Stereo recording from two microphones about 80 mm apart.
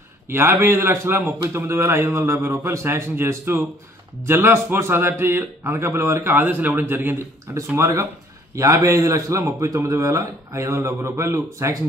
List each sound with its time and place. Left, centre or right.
0.3 s a man's voice: right